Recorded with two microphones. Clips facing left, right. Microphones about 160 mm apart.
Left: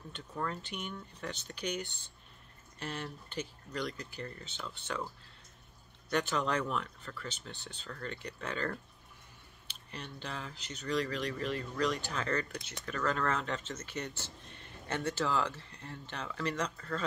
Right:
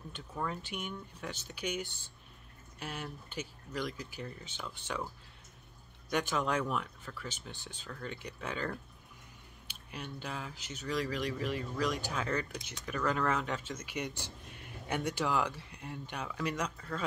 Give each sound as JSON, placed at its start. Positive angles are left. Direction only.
{"t": 0.1, "sound": "speech", "side_deg": -10}
{"t": 6.0, "sound": "speech", "side_deg": -10}
{"t": 9.7, "sound": "a sound", "side_deg": -10}
{"t": 10.2, "sound": "speech", "side_deg": -10}